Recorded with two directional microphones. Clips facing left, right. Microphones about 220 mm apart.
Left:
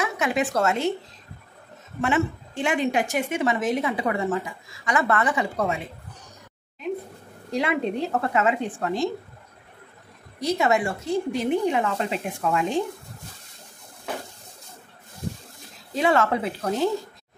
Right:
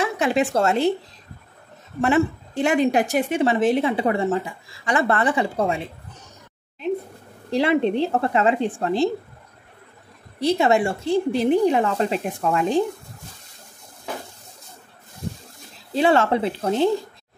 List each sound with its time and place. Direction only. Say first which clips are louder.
0.0 s a woman's voice: right 4 dB; 30° right (ahead or behind)
2.0 s a woman's voice: right 4 dB; 40° right (ahead or behind)
7.5 s speech: right 6 dB; 30° right (ahead or behind)
10.4 s a woman's voice: right 4 dB; 30° right (ahead or behind)
15.9 s speech: right 3 dB; 30° right (ahead or behind)